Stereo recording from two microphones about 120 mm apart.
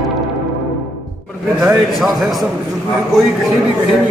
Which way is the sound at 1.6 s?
5° right (ahead or behind).